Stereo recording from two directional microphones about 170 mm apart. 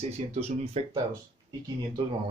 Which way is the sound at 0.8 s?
40° right (ahead or behind).